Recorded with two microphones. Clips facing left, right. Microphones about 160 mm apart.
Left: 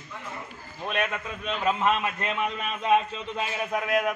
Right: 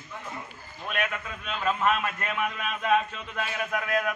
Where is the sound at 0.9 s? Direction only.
30° left (ahead or behind).